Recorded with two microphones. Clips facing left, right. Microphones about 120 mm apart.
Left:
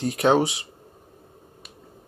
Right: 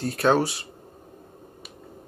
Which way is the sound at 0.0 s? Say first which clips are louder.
Left 2 dB; 15° left (ahead or behind).